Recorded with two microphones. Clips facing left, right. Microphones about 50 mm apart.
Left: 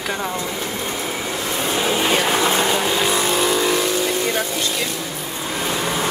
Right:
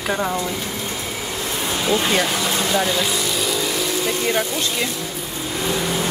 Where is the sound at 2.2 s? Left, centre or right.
Left.